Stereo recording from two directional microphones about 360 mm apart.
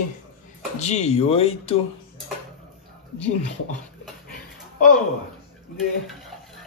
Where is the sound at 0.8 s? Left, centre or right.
Centre.